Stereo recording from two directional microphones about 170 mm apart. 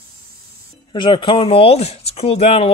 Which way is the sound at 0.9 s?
30° left (ahead or behind).